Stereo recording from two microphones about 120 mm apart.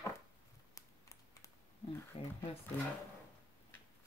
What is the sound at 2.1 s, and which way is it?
Speech, 55° left (ahead or behind).